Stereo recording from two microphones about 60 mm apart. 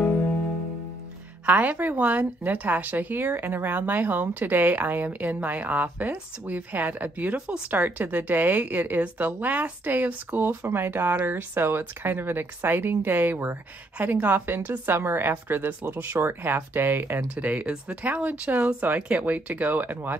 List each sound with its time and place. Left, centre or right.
1.4 s a woman's voice: right
17.4 s a woman's voice: right